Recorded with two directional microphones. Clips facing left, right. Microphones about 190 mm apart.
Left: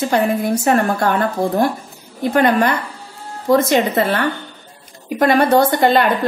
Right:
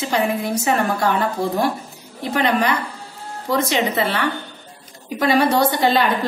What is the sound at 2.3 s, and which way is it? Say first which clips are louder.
A woman's voice: left 4 dB; 50° left (ahead or behind).